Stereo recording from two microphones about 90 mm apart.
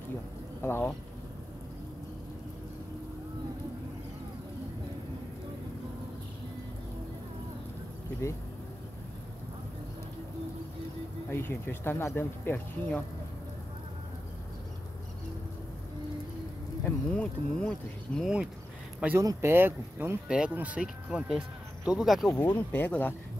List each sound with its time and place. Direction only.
0.6 s speech: 25° left (ahead or behind)
11.2 s speech: 25° left (ahead or behind)
16.8 s speech: 10° left (ahead or behind)
18.2 s speech: 10° right (ahead or behind)
19.1 s speech: 30° right (ahead or behind)
20.2 s speech: 10° right (ahead or behind)
22.5 s speech: 25° left (ahead or behind)